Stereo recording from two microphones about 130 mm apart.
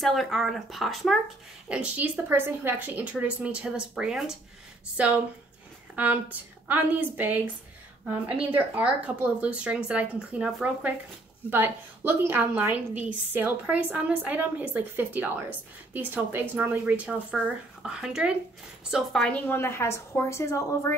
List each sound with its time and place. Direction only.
0.0 s speech: centre (ahead or behind)
1.7 s a woman's voice: 10° right (ahead or behind)
8.5 s a woman's voice: 15° right (ahead or behind)
19.2 s a woman's voice: 10° left (ahead or behind)